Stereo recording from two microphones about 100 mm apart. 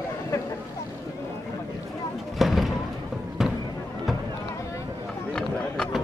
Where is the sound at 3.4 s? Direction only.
5° right (ahead or behind).